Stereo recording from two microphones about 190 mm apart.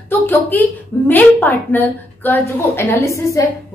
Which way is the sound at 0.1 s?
10° left (ahead or behind).